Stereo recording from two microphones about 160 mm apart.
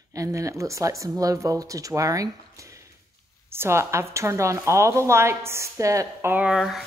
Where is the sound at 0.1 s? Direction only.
20° right (ahead or behind); by 6.8 s 5° right (ahead or behind).